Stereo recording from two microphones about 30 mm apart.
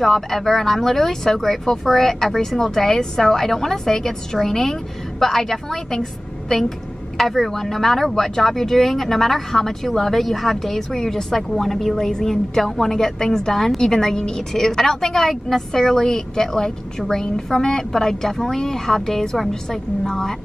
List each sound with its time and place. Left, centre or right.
0.0 s a woman's voice: centre
7.2 s a woman's voice: centre
20.1 s a woman's voice: centre